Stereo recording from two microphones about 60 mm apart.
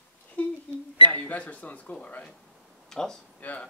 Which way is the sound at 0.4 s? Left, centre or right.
Left.